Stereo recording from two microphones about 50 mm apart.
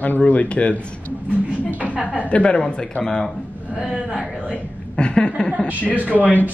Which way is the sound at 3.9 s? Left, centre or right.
Centre.